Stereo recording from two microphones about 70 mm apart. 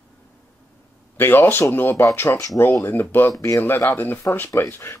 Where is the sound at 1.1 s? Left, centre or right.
Left.